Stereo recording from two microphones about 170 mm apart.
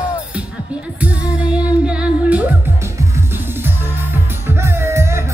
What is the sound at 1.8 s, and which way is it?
Humming, 5° right (ahead or behind).